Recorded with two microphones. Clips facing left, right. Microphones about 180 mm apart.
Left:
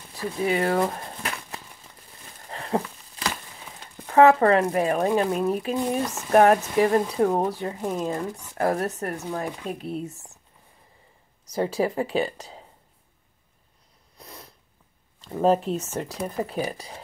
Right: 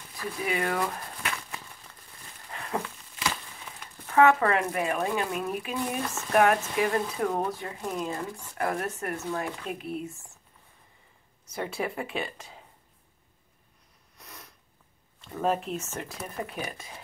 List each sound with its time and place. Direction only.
0.1 s speech: 30° left (ahead or behind)
2.4 s a sound: 35° left (ahead or behind)
3.8 s speech: 35° left (ahead or behind)
6.3 s speech: 35° left (ahead or behind)
11.4 s speech: 35° left (ahead or behind)
14.1 s sniff: 35° left (ahead or behind)
15.2 s speech: 30° left (ahead or behind)